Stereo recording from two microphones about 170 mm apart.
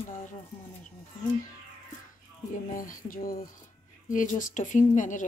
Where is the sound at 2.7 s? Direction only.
50° left (ahead or behind).